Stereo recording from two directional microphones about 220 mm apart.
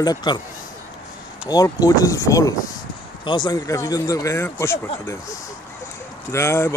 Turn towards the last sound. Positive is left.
turn(degrees=10)  # may be behind; listen again after turning